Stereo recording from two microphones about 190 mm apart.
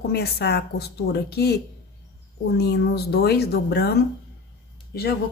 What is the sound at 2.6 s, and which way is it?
A woman's voice, 60° left (ahead or behind).